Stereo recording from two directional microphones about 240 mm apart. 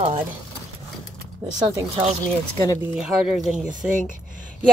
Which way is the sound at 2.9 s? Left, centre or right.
Centre.